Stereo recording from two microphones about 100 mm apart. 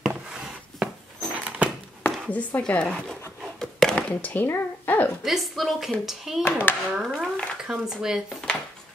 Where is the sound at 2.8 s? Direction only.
Centre (ahead or behind); by 5.1 s 20° left (ahead or behind).